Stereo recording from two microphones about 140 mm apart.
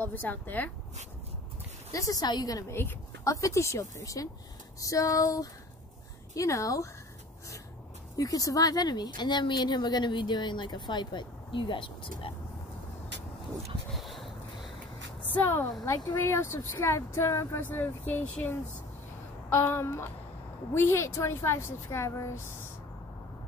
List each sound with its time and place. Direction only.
0.0 s speech: 10° left (ahead or behind)
1.9 s a woman's voice: 25° left (ahead or behind)
8.2 s a woman's voice: 25° left (ahead or behind)
13.9 s a sound: centre (ahead or behind)
15.2 s a woman's voice: 15° left (ahead or behind)
15.7 s a woman's voice: 25° left (ahead or behind)